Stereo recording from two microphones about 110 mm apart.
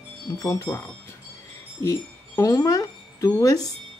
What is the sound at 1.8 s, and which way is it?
Speech, 30° left (ahead or behind).